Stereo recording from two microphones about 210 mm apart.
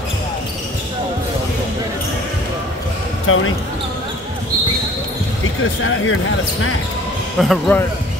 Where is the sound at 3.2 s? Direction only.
75° left (ahead or behind).